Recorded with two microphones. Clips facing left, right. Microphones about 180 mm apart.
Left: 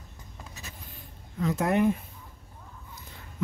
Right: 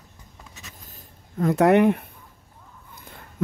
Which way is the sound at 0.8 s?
45° right (ahead or behind).